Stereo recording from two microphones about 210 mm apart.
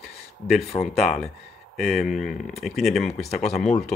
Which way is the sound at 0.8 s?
Centre (ahead or behind).